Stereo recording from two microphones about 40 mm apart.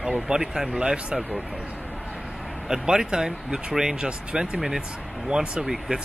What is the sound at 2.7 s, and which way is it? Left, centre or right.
Speech, centre.